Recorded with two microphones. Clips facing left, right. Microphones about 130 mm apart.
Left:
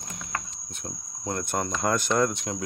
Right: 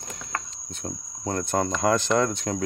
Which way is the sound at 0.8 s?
40° right (ahead or behind).